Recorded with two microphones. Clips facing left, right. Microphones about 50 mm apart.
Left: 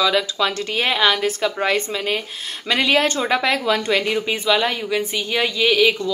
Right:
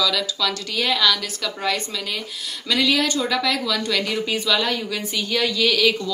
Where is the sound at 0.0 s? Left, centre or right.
Left.